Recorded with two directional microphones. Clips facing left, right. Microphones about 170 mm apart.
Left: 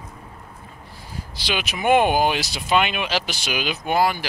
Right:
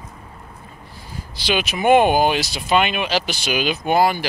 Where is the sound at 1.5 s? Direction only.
5° left (ahead or behind).